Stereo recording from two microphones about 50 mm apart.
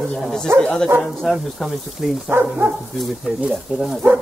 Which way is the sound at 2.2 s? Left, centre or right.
Right.